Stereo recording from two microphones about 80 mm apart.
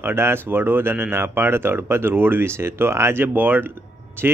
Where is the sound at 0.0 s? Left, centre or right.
Right.